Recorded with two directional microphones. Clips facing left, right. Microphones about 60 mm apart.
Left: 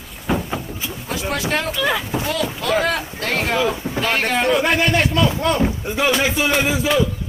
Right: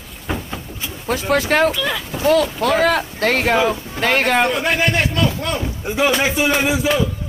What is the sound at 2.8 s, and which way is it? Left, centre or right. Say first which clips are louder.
Speech: right 5 dB; right.